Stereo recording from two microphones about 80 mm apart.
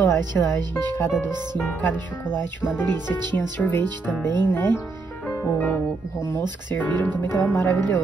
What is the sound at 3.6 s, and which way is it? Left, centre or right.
Speech, left.